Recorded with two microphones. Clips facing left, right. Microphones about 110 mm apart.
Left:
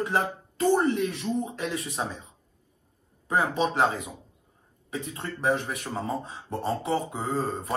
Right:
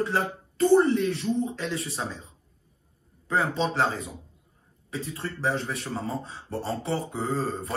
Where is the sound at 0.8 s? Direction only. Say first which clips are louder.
Right 1 dB; 30° right (ahead or behind).